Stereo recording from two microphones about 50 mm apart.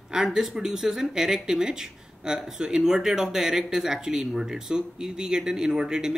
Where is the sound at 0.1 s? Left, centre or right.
Centre.